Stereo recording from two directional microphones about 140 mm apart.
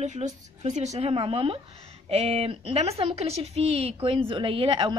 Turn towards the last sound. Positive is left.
turn(degrees=-35)  # may be behind; listen again after turning